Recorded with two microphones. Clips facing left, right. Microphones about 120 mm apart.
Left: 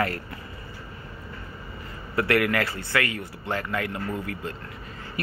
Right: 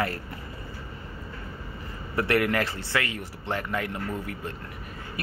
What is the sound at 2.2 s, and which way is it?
A man's voice, 20° right (ahead or behind).